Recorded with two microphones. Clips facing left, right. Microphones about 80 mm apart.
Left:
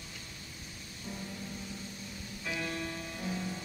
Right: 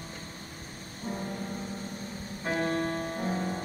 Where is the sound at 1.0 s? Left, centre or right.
Right.